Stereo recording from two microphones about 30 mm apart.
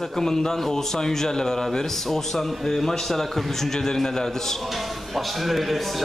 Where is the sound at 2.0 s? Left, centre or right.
Centre.